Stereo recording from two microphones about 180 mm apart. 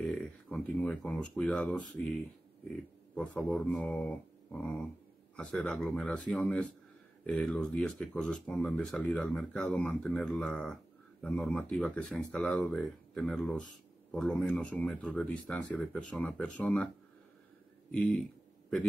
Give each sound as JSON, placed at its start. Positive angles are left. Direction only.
{"t": 0.0, "sound": "speech", "side_deg": 5}
{"t": 17.9, "sound": "speech", "side_deg": 5}